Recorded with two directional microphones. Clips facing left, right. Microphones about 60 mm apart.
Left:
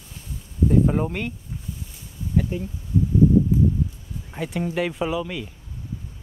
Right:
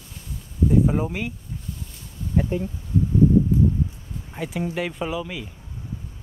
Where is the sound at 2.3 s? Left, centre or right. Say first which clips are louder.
Right 1 dB; right.